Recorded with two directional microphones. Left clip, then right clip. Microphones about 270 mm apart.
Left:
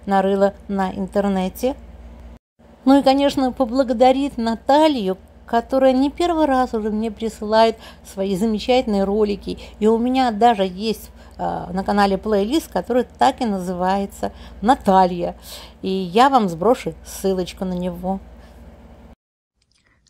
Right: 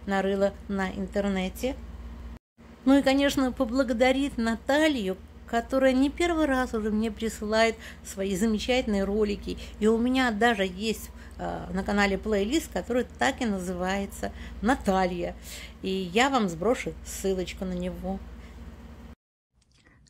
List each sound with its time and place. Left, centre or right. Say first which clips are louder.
0.0 s a woman's voice: left 9 dB; centre
2.8 s speech: left 8 dB; centre